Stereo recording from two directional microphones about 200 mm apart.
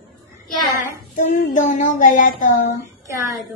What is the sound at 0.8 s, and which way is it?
Child singing, 40° left (ahead or behind).